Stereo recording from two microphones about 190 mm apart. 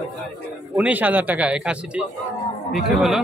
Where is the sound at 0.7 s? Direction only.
10° right (ahead or behind).